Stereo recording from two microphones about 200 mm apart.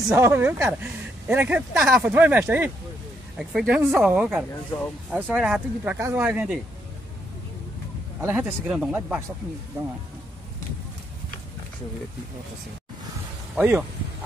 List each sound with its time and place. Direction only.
0.1 s speech: 10° right (ahead or behind)
4.7 s speech: 25° left (ahead or behind)
5.1 s speech: 5° right (ahead or behind)
8.2 s speech: 10° right (ahead or behind)
13.6 s speech: 10° right (ahead or behind)